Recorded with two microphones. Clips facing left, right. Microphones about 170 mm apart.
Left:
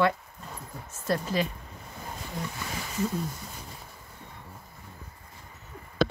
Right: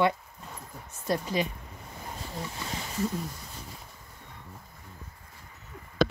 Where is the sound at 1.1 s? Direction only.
15° right (ahead or behind).